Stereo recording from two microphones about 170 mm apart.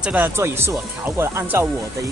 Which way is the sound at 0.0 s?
10° right (ahead or behind).